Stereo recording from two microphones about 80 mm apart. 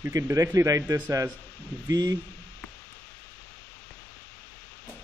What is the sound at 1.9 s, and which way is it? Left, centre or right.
Speech, right.